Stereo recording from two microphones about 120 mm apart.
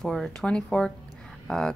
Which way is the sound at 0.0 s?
Centre (ahead or behind).